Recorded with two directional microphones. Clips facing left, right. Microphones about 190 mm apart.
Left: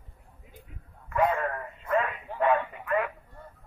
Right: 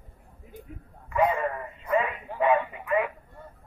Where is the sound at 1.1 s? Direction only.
Centre (ahead or behind).